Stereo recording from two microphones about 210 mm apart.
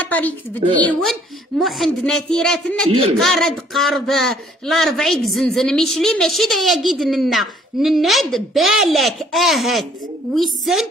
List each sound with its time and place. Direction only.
0.1 s a woman's voice: 10° left (ahead or behind)
0.6 s speech: 30° right (ahead or behind)
1.6 s speech: centre (ahead or behind)